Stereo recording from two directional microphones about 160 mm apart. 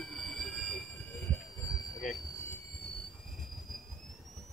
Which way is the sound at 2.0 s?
Centre (ahead or behind).